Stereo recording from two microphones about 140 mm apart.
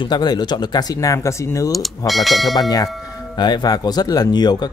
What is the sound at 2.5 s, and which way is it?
Speech, 25° left (ahead or behind).